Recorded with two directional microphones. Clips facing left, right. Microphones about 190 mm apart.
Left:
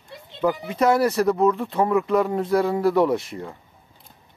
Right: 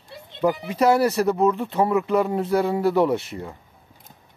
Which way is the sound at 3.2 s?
30° right (ahead or behind).